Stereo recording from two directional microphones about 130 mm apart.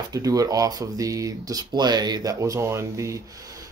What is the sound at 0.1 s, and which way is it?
Speech, 30° right (ahead or behind).